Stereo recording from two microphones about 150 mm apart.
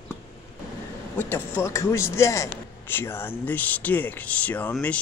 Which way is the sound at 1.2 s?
15° left (ahead or behind).